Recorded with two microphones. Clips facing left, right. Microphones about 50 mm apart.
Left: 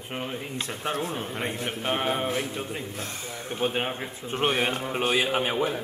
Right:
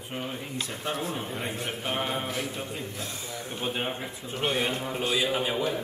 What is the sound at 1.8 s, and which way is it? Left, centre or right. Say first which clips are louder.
Speech: left 5 dB; left.